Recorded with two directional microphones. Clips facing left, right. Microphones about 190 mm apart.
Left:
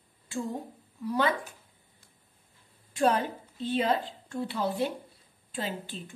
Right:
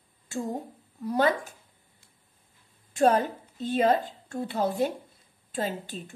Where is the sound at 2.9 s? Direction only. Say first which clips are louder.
Right 4 dB; 45° right (ahead or behind).